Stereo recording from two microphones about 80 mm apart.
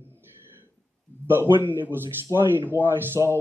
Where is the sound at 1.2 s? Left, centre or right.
Right.